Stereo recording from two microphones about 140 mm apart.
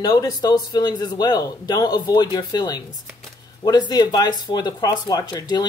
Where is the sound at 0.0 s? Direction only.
25° left (ahead or behind).